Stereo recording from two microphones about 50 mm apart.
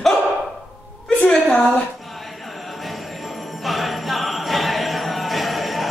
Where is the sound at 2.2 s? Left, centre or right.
Centre.